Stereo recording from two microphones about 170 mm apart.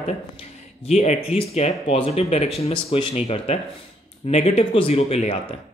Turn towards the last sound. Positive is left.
turn(degrees=35)  # may be behind; listen again after turning